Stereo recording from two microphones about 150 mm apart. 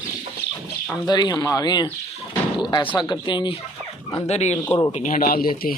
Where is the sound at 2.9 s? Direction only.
30° left (ahead or behind).